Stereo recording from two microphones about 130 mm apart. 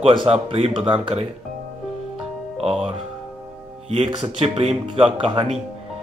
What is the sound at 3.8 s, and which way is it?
Speech, 50° right (ahead or behind).